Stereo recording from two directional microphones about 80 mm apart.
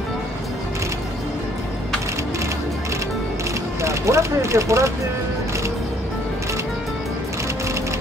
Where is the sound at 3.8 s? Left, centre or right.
Right.